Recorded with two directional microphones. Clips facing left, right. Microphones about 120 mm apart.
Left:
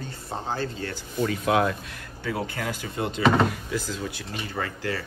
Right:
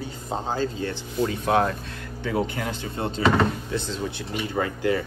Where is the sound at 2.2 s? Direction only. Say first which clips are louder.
Right 4 dB; 20° right (ahead or behind).